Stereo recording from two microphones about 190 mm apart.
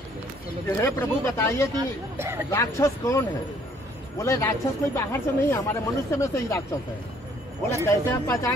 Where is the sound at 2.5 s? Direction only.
15° left (ahead or behind).